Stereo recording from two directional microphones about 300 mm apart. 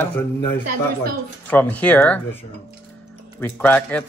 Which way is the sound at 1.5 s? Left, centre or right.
Centre.